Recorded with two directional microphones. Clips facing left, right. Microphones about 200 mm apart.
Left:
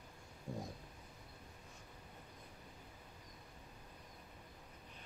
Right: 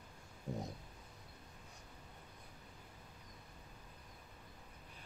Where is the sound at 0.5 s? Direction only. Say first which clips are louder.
Right 2 dB; 20° right (ahead or behind).